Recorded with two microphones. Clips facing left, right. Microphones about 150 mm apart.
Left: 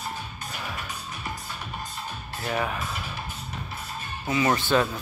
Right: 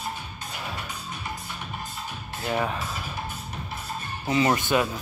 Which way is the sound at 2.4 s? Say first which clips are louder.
Right 1 dB; 20° right (ahead or behind).